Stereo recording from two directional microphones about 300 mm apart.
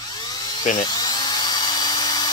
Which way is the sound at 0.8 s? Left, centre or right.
Centre.